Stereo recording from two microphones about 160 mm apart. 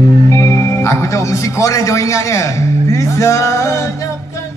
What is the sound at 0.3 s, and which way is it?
Music, 20° left (ahead or behind).